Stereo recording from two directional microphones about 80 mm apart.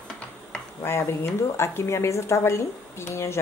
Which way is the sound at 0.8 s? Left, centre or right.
Left.